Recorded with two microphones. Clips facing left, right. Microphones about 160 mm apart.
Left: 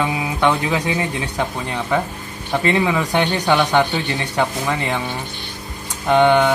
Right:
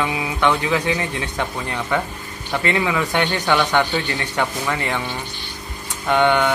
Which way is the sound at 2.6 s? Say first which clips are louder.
Left 3 dB; 25° left (ahead or behind).